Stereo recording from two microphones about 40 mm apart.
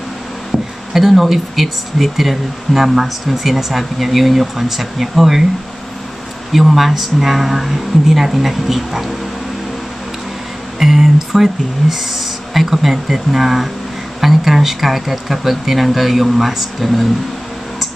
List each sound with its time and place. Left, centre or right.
0.5 s a sound: centre
0.9 s speech: centre
6.5 s speech: centre
10.8 s speech: centre